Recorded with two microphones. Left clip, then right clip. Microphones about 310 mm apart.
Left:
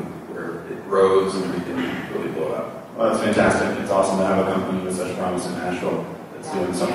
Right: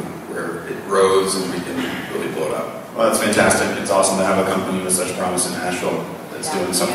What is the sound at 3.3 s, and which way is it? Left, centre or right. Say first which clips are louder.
A man's voice: right 3 dB; centre.